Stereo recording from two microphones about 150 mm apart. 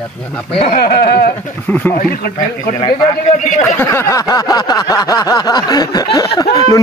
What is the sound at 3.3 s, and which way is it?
Speech, 55° left (ahead or behind).